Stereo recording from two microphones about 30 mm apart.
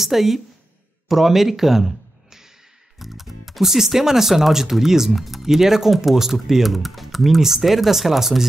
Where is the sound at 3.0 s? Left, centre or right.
Centre.